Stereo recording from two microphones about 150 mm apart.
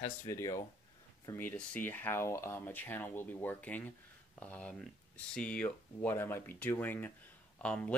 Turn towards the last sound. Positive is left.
turn(degrees=5)  # may be behind; listen again after turning